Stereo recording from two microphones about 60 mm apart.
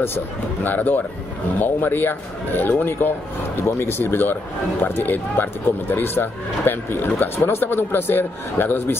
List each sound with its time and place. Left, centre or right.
0.7 s speech: left